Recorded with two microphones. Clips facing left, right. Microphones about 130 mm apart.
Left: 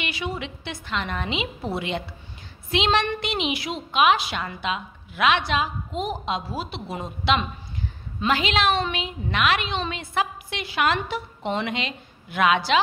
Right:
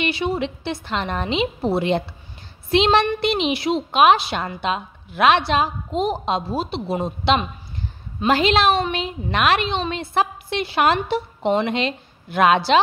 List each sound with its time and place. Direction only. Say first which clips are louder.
0.0 s a woman's voice: right 8 dB; 30° right (ahead or behind)
4.0 s a woman's voice: right 4 dB; 40° right (ahead or behind)
4.7 s a woman's voice: right 5 dB; 40° right (ahead or behind)